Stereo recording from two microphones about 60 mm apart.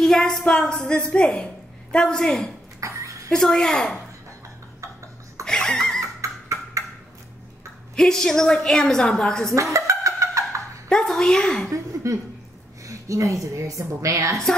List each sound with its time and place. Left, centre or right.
0.0 s a woman's voice: centre
2.8 s a sound: right
3.3 s a woman's voice: centre
5.4 s laughter: centre
6.2 s a sound: right
7.9 s a woman's voice: centre
9.6 s a sound: right
10.9 s a woman's voice: centre
11.7 s a woman's voice: right